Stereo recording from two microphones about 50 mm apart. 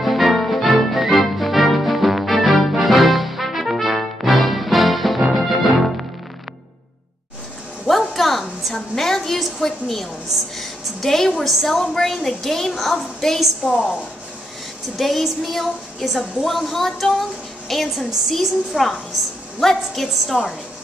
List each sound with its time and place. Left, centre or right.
0.0 s music: centre
8.1 s a sound: centre
11.0 s a woman's voice: centre
15.0 s a woman's voice: centre